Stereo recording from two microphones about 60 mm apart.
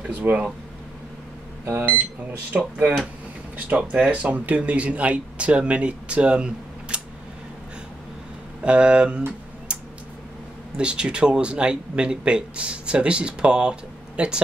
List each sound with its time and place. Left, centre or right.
0.1 s speech: right
2.5 s speech: right
8.6 s speech: centre
9.7 s tick-tock: centre
10.8 s speech: centre